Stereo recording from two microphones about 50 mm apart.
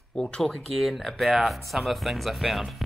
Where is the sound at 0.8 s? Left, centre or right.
Centre.